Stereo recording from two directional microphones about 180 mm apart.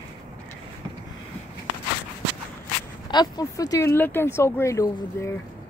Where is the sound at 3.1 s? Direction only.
20° left (ahead or behind).